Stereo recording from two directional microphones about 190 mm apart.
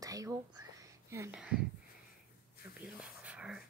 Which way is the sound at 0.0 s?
20° right (ahead or behind).